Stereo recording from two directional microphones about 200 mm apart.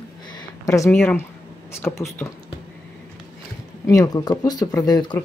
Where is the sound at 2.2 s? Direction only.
15° left (ahead or behind).